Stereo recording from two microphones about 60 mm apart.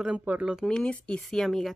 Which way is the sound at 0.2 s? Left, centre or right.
Right.